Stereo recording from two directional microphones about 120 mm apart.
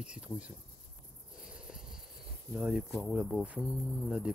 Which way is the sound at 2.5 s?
10° right (ahead or behind).